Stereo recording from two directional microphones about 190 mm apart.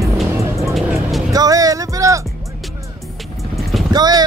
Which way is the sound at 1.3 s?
20° right (ahead or behind).